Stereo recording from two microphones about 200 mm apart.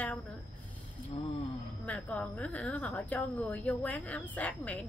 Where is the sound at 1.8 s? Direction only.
5° left (ahead or behind).